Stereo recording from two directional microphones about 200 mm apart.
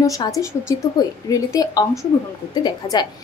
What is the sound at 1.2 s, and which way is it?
Speech, 15° left (ahead or behind).